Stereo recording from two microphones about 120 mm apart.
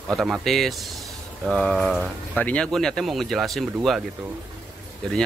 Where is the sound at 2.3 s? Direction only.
10° left (ahead or behind).